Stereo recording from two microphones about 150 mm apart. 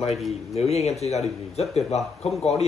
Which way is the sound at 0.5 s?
45° left (ahead or behind).